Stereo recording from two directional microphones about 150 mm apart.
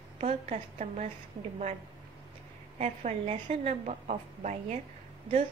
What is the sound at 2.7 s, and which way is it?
A woman's voice, 50° right (ahead or behind).